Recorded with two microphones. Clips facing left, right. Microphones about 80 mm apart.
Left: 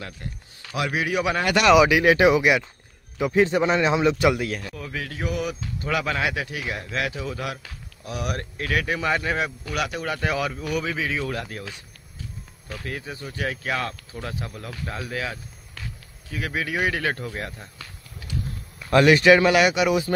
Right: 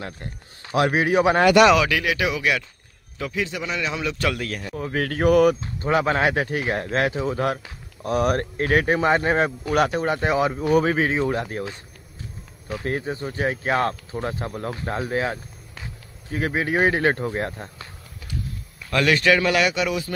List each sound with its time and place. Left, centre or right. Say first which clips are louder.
0.0 s speech: right 2 dB; right
1.8 s speech: left 5 dB; centre
2.0 s a man's voice: left 6 dB; left
3.3 s a man's voice: left 8 dB; left; by 4.6 s centre
4.9 s speech: right 11 dB; right
5.6 s speech: right 5 dB; right
11.1 s speech: right 6 dB; right
12.8 s speech: right 7 dB; right
18.8 s speech: left 4 dB; centre